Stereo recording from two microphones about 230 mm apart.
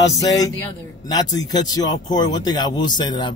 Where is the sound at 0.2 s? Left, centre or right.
Centre.